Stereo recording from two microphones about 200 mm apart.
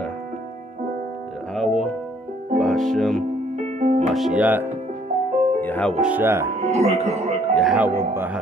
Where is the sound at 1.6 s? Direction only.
Centre (ahead or behind).